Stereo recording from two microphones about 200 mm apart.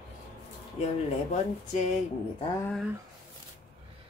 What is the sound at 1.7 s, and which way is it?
Speech, 35° left (ahead or behind).